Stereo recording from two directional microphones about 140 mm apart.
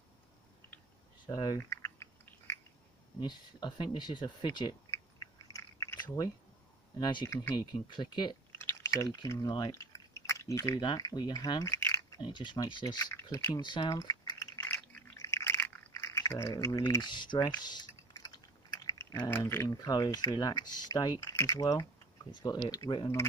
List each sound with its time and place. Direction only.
1.2 s speech: 35° left (ahead or behind)
1.6 s a sound: 20° left (ahead or behind)
3.2 s a sound: 35° left (ahead or behind)
5.9 s speech: 30° left (ahead or behind)
7.2 s speech: 20° left (ahead or behind)
7.5 s speech: 35° left (ahead or behind)
8.5 s speech: 20° left (ahead or behind)
9.9 s chewing: 20° left (ahead or behind)
10.8 s speech: 30° left (ahead or behind)
12.2 s speech: 35° left (ahead or behind)
13.1 s speech: 15° left (ahead or behind)
13.6 s speech: 35° left (ahead or behind)
14.7 s a sound: 15° left (ahead or behind); by 17.5 s 35° left (ahead or behind)
17.6 s speech: 30° left (ahead or behind)